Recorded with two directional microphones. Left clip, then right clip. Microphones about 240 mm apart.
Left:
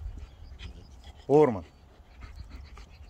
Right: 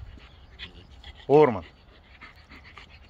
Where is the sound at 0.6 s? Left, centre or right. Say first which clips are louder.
Right 8 dB; left.